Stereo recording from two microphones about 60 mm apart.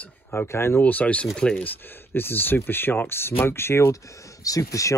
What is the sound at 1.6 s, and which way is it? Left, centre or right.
Speech, left.